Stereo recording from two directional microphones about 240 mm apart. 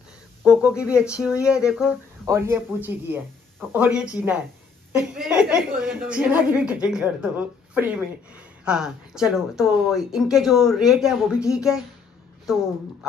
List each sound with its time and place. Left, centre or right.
0.4 s a woman's voice: centre